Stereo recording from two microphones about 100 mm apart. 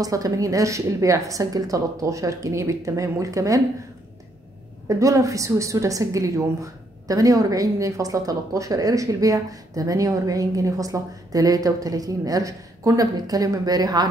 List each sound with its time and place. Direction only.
0.0 s a woman's voice: 35° right (ahead or behind)
4.8 s a woman's voice: 35° right (ahead or behind)